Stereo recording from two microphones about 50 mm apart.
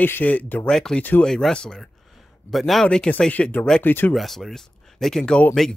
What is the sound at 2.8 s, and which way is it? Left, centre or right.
Speech, centre.